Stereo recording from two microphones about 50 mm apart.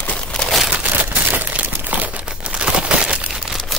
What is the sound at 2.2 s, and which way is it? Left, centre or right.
Crumpling, centre.